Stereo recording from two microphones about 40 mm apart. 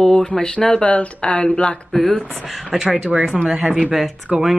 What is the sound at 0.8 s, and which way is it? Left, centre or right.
Speech, left.